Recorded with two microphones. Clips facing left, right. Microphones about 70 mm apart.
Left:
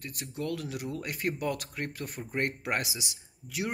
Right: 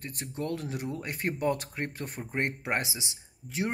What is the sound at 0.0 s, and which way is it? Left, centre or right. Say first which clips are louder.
Speech: right 1 dB; right.